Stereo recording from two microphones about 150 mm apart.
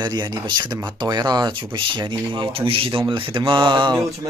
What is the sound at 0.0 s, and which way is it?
Speech, 25° right (ahead or behind).